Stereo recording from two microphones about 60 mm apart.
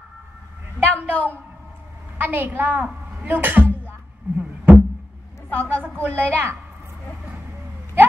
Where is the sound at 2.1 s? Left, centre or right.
Right.